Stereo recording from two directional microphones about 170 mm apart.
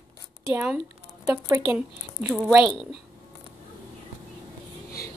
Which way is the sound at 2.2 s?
5° right (ahead or behind).